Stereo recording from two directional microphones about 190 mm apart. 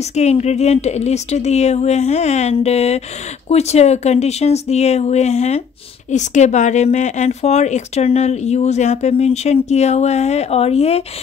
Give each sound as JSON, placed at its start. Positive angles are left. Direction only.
{"t": 0.1, "sound": "speech", "side_deg": 35}